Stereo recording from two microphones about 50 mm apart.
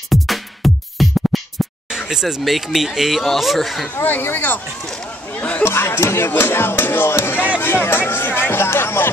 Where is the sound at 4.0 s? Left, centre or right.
Left.